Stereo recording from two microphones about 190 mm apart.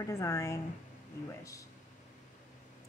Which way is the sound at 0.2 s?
15° left (ahead or behind).